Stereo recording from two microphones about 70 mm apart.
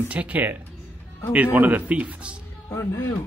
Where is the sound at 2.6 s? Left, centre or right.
Left.